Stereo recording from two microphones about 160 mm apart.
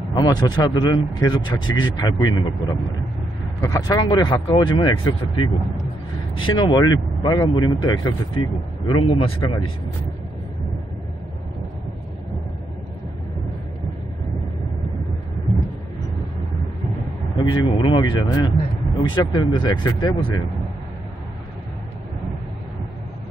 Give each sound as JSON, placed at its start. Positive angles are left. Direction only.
{"t": 0.1, "sound": "speech", "side_deg": 25}
{"t": 17.4, "sound": "speech", "side_deg": 30}